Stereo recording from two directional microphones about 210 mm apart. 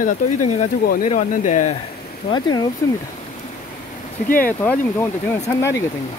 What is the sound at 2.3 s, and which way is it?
Speech, 20° left (ahead or behind).